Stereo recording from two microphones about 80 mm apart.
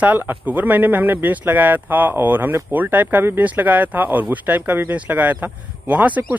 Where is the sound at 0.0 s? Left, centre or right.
Right.